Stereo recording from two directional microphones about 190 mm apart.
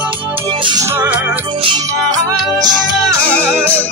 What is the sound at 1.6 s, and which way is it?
Music, 20° right (ahead or behind).